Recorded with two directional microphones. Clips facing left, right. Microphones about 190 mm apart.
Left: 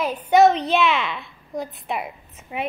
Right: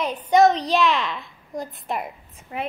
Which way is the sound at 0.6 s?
40° right (ahead or behind).